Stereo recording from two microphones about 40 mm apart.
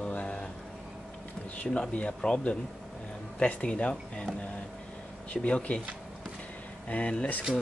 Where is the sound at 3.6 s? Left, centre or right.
Left.